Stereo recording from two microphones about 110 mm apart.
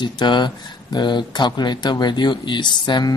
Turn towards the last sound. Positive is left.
turn(degrees=45)  # may be behind; listen again after turning